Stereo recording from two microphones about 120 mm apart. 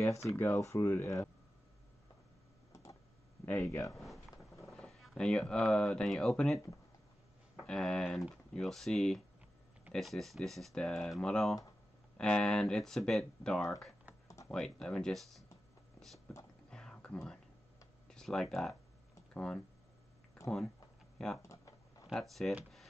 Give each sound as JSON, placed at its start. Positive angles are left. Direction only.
{"t": 0.0, "sound": "speech", "side_deg": 25}
{"t": 2.7, "sound": "tick-tock", "side_deg": 25}
{"t": 3.4, "sound": "speech", "side_deg": 15}
{"t": 3.9, "sound": "a sound", "side_deg": 0}
{"t": 4.6, "sound": "speech", "side_deg": 0}
{"t": 7.6, "sound": "speech", "side_deg": 5}
{"t": 14.2, "sound": "computer keyboard", "side_deg": 25}
{"t": 14.5, "sound": "speech", "side_deg": 5}
{"t": 16.0, "sound": "a sound", "side_deg": 5}
{"t": 16.7, "sound": "whispering", "side_deg": 5}
{"t": 18.0, "sound": "speech", "side_deg": 5}
{"t": 21.4, "sound": "a sound", "side_deg": 25}
{"t": 22.0, "sound": "speech", "side_deg": 0}